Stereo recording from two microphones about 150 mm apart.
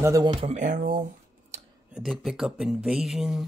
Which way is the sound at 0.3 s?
40° right (ahead or behind).